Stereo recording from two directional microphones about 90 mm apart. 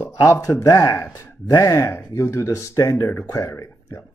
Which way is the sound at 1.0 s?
25° left (ahead or behind).